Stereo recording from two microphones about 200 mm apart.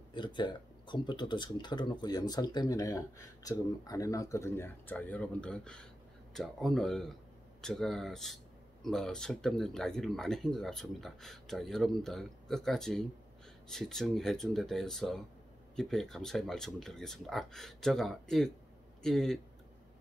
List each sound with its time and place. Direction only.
0.1 s speech: 20° left (ahead or behind); by 19.4 s centre (ahead or behind)